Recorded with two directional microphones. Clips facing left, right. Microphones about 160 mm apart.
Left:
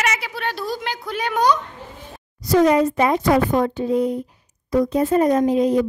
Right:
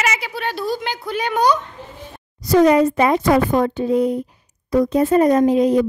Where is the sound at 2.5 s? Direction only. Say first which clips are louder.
Right 2 dB; 75° right (ahead or behind).